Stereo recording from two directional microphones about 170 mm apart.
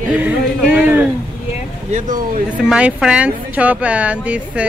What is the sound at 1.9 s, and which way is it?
Speech, 50° right (ahead or behind).